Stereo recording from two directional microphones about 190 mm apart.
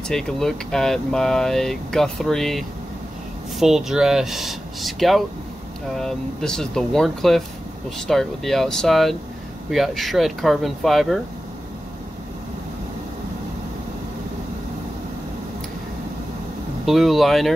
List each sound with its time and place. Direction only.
0.1 s speech: 5° left (ahead or behind)
16.8 s speech: centre (ahead or behind)